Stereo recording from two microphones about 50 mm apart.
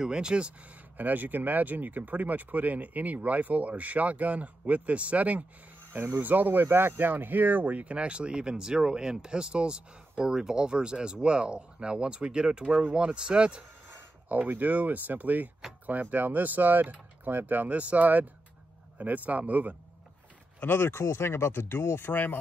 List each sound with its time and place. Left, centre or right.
0.0 s speech: centre
0.9 s speech: right
5.9 s speech: right
14.3 s speech: right
20.6 s speech: left